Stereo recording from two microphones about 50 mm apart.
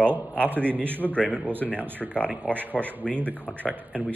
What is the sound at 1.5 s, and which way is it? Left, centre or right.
Speech, right.